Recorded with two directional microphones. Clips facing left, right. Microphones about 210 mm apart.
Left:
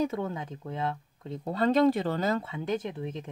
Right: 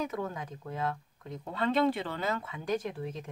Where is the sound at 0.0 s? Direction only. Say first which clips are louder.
Left 5 dB; 25° left (ahead or behind).